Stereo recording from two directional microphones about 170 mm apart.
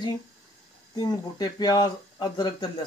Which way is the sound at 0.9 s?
25° left (ahead or behind).